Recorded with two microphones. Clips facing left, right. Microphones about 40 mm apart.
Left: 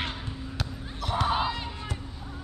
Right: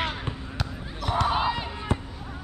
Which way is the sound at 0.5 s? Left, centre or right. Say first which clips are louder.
Right 2 dB; centre.